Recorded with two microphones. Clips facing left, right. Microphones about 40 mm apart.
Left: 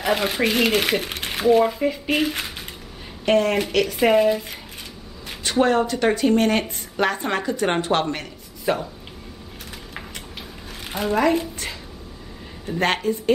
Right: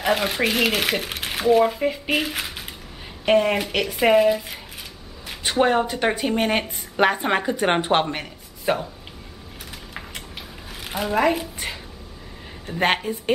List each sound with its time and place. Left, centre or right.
0.0 s speech: centre
5.4 s speech: centre
10.8 s a woman's voice: centre